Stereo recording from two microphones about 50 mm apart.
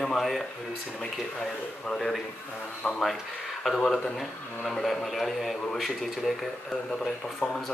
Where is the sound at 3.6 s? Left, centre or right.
Centre.